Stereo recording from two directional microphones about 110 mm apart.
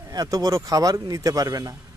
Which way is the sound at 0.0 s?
35° right (ahead or behind).